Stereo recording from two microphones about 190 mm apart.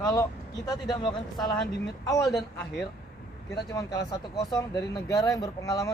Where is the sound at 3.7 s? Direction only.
20° left (ahead or behind).